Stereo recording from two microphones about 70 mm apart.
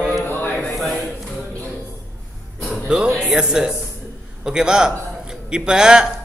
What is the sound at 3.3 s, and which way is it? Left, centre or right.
A man's voice, centre.